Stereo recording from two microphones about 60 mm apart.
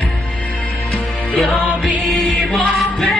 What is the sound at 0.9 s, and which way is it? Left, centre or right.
Music, centre.